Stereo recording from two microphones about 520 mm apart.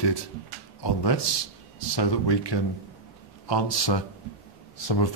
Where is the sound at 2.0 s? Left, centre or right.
Left.